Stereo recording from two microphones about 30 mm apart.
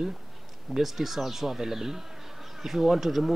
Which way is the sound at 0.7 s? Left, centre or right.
Centre.